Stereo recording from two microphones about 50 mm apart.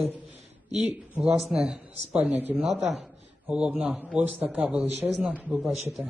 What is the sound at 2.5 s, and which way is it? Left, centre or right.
Speech, centre.